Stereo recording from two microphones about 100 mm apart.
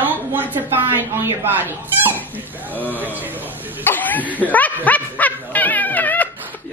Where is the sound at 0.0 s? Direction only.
20° right (ahead or behind).